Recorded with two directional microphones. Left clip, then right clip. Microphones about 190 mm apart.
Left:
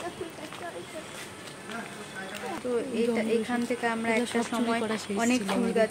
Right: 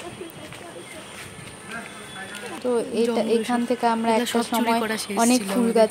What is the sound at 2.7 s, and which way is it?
A woman's voice, 20° right (ahead or behind).